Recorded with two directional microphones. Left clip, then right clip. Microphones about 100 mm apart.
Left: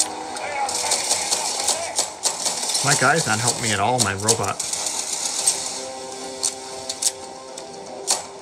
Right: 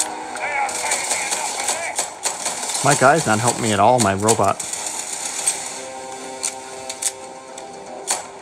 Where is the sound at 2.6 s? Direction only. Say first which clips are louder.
Right 4 dB; 35° right (ahead or behind).